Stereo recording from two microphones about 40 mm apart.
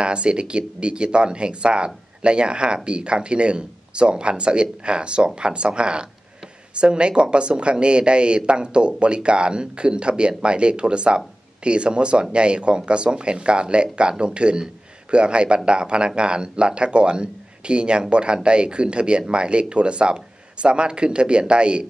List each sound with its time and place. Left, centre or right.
0.0 s speech: right